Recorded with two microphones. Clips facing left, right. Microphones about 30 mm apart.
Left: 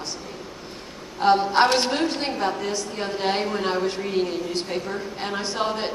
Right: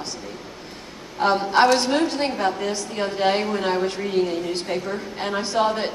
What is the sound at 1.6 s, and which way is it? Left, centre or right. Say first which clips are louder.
Speech: right 2 dB; left.